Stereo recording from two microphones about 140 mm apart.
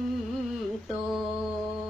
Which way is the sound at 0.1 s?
Centre (ahead or behind).